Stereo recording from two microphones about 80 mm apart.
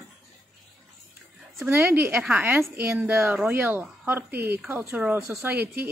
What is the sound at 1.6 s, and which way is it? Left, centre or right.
A woman's voice, right.